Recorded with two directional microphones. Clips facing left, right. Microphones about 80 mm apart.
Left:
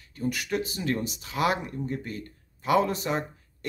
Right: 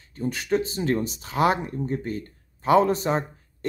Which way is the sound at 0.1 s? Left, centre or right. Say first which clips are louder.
Right 4 dB; right.